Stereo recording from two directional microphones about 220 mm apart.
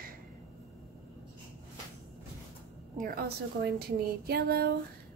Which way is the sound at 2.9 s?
40° right (ahead or behind).